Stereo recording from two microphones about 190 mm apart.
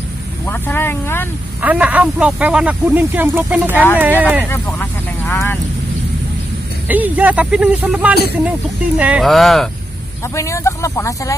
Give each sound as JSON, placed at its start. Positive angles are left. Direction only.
{"t": 0.5, "sound": "speech", "side_deg": 10}
{"t": 1.6, "sound": "speech", "side_deg": -10}
{"t": 4.5, "sound": "vehicle", "side_deg": 10}
{"t": 6.9, "sound": "speech", "side_deg": -10}
{"t": 10.2, "sound": "speech", "side_deg": 15}